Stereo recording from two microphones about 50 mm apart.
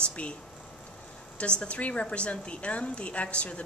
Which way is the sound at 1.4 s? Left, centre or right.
Left.